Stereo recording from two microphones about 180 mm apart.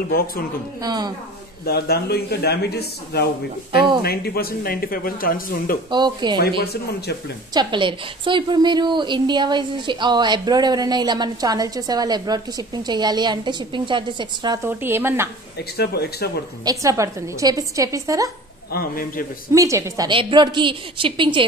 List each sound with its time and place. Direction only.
0.1 s speech: 55° left (ahead or behind)
0.8 s a woman's voice: 20° right (ahead or behind)
1.7 s speech: 60° left (ahead or behind)
5.9 s a woman's voice: 25° right (ahead or behind)
6.6 s speech: 65° left (ahead or behind)
7.5 s a woman's voice: 25° right (ahead or behind)
14.6 s a woman's voice: 10° right (ahead or behind)
15.8 s speech: 65° left (ahead or behind)
16.6 s a woman's voice: 15° right (ahead or behind)
18.7 s speech: 55° left (ahead or behind)
19.5 s a woman's voice: 20° right (ahead or behind)